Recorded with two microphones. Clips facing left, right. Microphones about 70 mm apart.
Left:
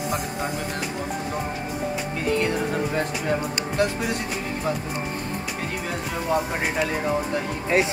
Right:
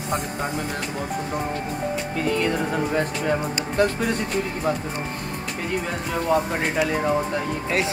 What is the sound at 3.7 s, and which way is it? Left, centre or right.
Speech, centre.